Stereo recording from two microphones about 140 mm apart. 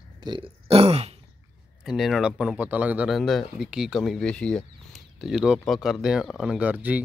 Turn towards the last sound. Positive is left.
turn(degrees=-10)  # may be behind; listen again after turning